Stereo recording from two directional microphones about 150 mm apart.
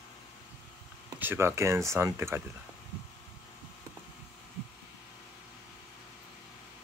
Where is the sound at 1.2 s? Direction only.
15° right (ahead or behind).